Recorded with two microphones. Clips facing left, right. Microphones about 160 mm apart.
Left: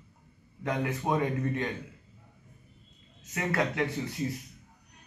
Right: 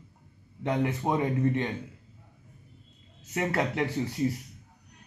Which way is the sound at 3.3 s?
30° right (ahead or behind).